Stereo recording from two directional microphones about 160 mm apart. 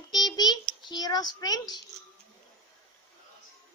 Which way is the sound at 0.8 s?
25° left (ahead or behind).